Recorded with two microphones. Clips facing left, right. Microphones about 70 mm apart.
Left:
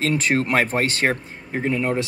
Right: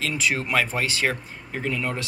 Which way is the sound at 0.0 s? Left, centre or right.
Left.